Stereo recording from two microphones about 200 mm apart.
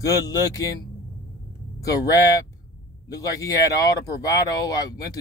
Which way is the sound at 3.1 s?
15° left (ahead or behind).